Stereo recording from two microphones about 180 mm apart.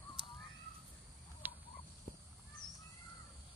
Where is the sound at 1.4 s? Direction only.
10° right (ahead or behind).